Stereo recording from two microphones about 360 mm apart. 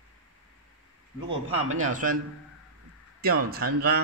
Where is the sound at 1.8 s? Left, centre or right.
Right.